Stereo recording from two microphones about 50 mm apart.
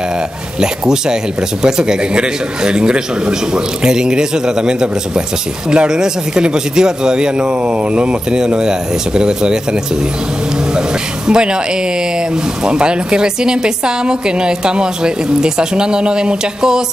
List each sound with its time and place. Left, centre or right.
0.6 s a woman's voice: centre
11.2 s a woman's voice: centre
12.6 s a woman's voice: centre